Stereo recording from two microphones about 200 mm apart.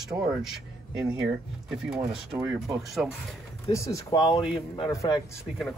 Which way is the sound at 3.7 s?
15° left (ahead or behind).